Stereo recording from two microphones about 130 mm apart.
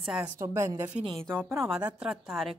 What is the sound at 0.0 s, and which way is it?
Speech, 5° right (ahead or behind).